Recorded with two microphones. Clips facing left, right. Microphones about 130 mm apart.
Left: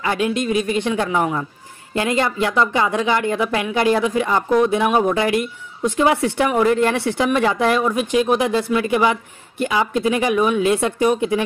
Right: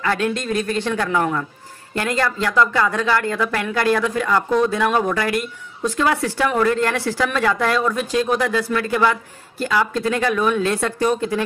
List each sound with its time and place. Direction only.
0.0 s speech: 15° left (ahead or behind)